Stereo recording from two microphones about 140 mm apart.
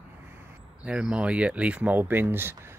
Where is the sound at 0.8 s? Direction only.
5° right (ahead or behind).